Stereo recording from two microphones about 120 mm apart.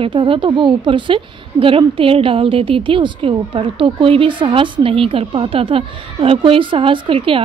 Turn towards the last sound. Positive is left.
turn(degrees=-50)  # may be behind; listen again after turning